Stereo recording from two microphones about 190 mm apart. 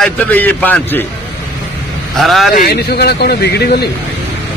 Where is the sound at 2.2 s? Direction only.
Centre (ahead or behind).